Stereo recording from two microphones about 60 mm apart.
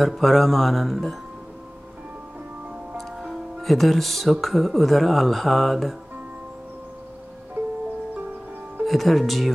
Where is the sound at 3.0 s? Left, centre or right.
Centre.